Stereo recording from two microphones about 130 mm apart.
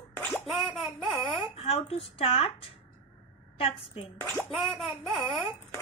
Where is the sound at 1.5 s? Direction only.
50° left (ahead or behind).